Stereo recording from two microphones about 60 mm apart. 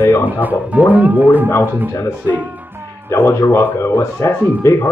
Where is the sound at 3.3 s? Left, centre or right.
Left.